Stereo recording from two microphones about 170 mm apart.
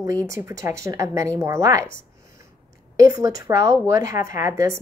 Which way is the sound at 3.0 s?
20° right (ahead or behind).